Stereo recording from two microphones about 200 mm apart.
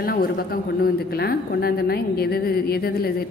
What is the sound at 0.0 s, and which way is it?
A woman's voice, 50° left (ahead or behind).